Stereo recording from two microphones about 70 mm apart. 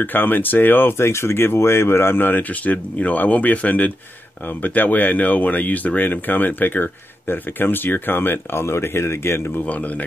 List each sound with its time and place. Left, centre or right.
0.0 s speech: left
9.7 s speech: left